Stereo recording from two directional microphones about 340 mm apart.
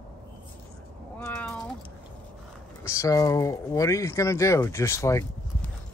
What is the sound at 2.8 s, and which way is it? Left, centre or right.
Speech, centre.